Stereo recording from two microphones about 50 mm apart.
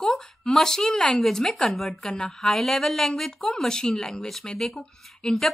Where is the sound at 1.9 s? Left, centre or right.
Centre.